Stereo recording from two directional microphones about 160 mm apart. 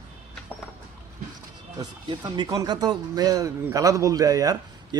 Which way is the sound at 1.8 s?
25° right (ahead or behind).